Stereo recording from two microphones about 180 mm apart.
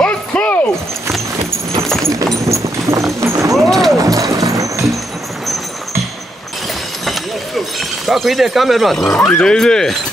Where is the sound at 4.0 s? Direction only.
20° right (ahead or behind).